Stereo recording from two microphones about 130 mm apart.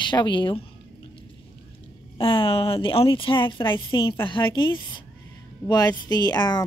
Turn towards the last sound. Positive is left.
turn(degrees=35)  # may be behind; listen again after turning